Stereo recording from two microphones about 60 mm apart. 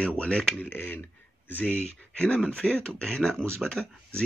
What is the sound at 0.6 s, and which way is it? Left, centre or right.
Speech, left.